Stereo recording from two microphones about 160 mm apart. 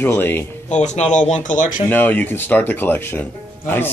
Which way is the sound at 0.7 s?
50° left (ahead or behind).